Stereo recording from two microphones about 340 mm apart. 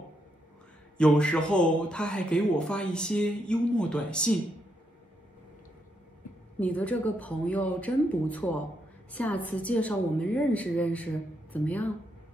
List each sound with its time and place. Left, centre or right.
0.9 s a man's voice: centre
6.6 s a man's voice: centre